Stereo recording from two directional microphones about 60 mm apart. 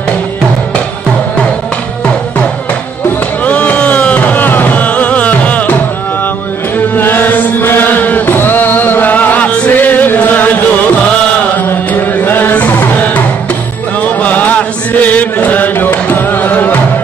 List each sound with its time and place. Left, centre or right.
3.4 s music: left
7.0 s chant: left
11.5 s chant: left
12.5 s music: left
14.2 s chant: left